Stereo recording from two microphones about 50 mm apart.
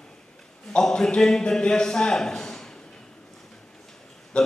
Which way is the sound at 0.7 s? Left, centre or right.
Centre.